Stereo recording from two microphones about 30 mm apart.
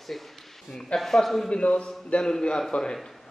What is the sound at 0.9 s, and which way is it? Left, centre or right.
Speech, centre.